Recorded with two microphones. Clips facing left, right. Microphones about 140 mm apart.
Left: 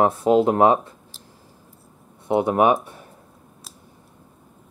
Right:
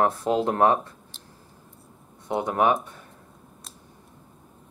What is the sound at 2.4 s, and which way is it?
Speech, 15° left (ahead or behind).